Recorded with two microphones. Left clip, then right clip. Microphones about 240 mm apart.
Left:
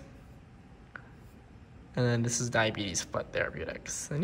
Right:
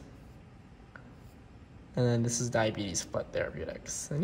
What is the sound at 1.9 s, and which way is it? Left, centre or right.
Speech, centre.